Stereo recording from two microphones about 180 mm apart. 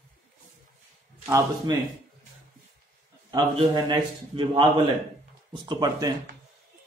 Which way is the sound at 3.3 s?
25° right (ahead or behind).